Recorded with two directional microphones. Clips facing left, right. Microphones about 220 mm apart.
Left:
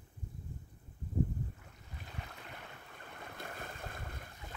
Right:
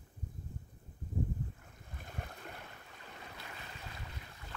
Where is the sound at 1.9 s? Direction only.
50° right (ahead or behind).